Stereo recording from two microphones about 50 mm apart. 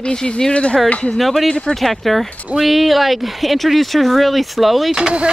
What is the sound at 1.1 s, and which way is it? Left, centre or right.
Speech, centre.